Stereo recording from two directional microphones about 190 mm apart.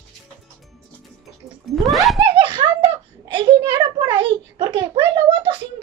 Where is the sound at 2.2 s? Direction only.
25° right (ahead or behind).